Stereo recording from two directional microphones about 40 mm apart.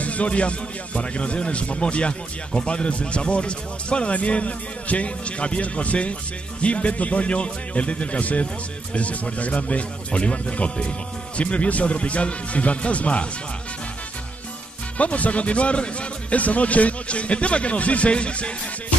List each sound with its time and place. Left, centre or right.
0.0 s a man's voice: left
15.0 s a man's voice: left